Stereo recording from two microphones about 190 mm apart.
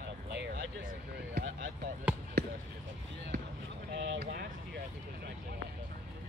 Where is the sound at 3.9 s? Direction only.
65° right (ahead or behind).